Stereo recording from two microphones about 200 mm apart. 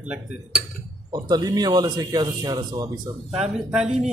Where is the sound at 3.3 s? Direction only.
5° right (ahead or behind).